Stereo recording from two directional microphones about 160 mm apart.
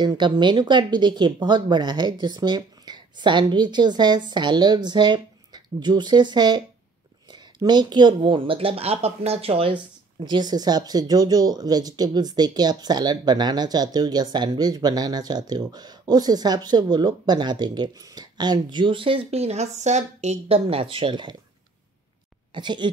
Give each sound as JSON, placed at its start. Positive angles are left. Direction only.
{"t": 0.0, "sound": "speech", "side_deg": -30}
{"t": 22.5, "sound": "speech", "side_deg": -30}